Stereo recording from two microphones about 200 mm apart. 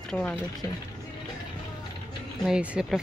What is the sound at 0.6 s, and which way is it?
Speech, 15° left (ahead or behind).